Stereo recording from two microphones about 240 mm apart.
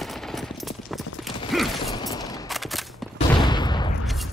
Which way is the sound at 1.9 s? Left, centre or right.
Centre.